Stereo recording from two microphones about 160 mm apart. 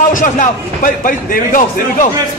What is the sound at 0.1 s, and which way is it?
A man's voice, 55° left (ahead or behind).